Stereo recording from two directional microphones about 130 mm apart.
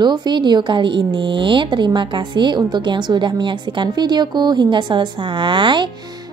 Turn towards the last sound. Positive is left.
turn(degrees=-40)  # may be behind; listen again after turning